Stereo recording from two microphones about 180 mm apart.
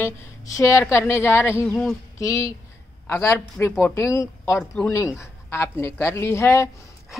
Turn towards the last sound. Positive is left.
turn(degrees=15)  # may be behind; listen again after turning